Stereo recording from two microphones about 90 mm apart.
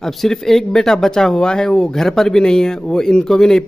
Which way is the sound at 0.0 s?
5° left (ahead or behind).